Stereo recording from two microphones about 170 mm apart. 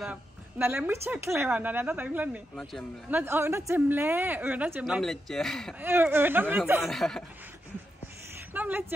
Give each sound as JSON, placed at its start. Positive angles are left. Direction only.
{"t": 0.0, "sound": "a woman's voice", "side_deg": -10}
{"t": 3.1, "sound": "a woman's voice", "side_deg": -10}
{"t": 5.8, "sound": "a woman's voice", "side_deg": -10}
{"t": 8.5, "sound": "a sound", "side_deg": -10}